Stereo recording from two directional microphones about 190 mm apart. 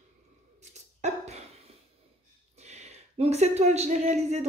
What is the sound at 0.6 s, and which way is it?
Dog, 40° right (ahead or behind).